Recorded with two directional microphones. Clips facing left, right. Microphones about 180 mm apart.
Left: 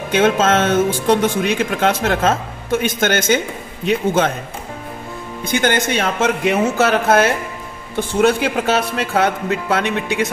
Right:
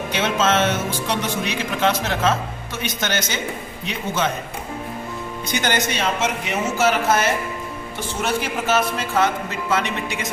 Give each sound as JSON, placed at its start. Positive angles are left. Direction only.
{"t": 0.1, "sound": "speech", "side_deg": 50}
{"t": 5.5, "sound": "a man's voice", "side_deg": 55}